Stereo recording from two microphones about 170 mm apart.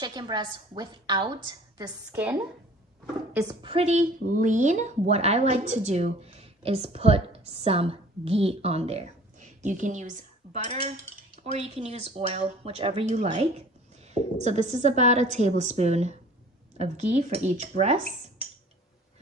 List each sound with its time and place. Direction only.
0.0 s a woman's voice: 25° right (ahead or behind)
3.6 s a woman's voice: 35° right (ahead or behind)